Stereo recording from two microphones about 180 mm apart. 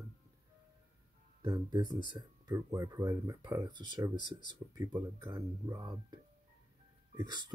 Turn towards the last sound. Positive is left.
turn(degrees=-25)  # may be behind; listen again after turning